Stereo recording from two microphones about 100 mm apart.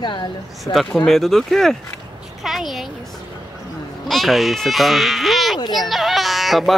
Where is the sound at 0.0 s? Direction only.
50° left (ahead or behind).